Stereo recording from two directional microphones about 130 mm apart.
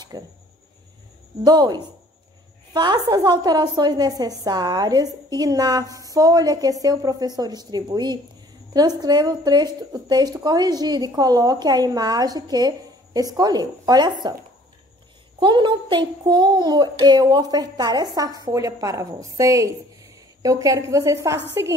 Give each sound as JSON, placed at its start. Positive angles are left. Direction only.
{"t": 0.1, "sound": "a woman's voice", "side_deg": -30}
{"t": 1.4, "sound": "a woman's voice", "side_deg": -30}
{"t": 15.4, "sound": "a woman's voice", "side_deg": -35}